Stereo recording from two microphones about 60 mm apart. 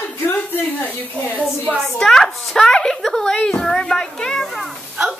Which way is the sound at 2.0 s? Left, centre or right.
Centre.